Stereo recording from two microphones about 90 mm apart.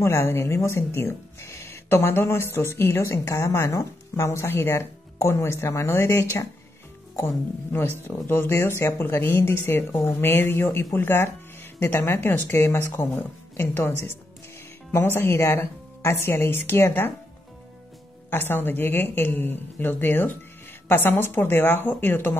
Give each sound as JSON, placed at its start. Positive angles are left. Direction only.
{"t": 0.0, "sound": "speech", "side_deg": 30}
{"t": 8.0, "sound": "speech", "side_deg": 25}
{"t": 15.1, "sound": "speech", "side_deg": 30}
{"t": 18.3, "sound": "speech", "side_deg": 25}